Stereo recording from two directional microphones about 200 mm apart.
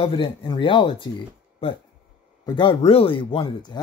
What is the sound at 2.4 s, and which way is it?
Speech, 25° left (ahead or behind).